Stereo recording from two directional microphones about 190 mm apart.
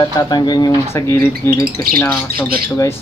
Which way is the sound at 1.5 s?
50° right (ahead or behind).